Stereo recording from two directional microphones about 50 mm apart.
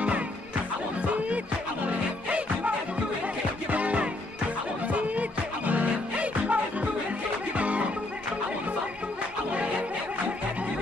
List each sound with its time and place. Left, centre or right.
1.0 s music: right
3.7 s music: right
9.5 s music: right